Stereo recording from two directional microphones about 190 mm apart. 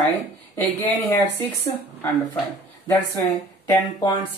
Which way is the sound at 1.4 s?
10° left (ahead or behind).